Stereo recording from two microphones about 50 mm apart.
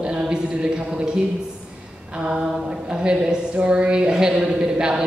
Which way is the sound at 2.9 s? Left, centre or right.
Centre.